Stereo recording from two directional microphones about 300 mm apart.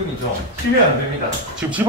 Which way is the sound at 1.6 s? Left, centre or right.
Centre.